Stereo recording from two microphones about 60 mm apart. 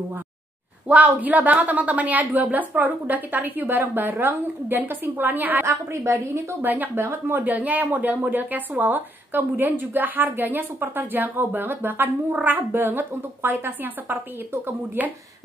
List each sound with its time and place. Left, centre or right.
0.8 s a woman's voice: right